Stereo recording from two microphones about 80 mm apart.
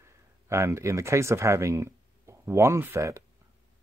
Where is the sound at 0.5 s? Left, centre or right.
Right.